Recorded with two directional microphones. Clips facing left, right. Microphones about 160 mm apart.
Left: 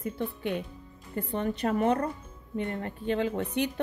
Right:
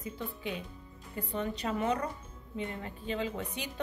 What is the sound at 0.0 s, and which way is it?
A woman's voice, 60° left (ahead or behind).